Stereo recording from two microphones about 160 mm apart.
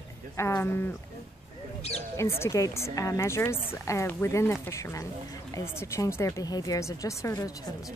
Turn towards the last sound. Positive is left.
turn(degrees=20)  # may be behind; listen again after turning